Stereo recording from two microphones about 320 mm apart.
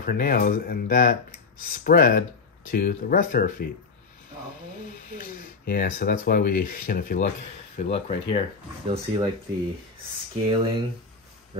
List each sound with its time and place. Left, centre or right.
0.0 s speech: left
5.2 s speech: left
8.8 s speech: centre
10.5 s speech: centre